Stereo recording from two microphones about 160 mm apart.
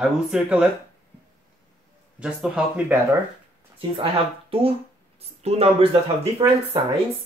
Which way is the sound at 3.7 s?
35° right (ahead or behind).